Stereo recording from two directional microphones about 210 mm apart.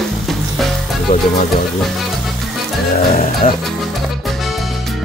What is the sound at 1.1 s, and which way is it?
Speech, 35° left (ahead or behind).